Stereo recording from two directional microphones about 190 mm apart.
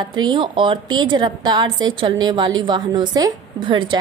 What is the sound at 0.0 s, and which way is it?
A woman's voice, 25° right (ahead or behind).